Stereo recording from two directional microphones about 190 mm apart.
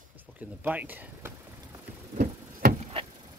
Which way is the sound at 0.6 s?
10° right (ahead or behind).